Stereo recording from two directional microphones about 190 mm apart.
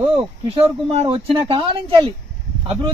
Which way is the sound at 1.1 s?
25° right (ahead or behind).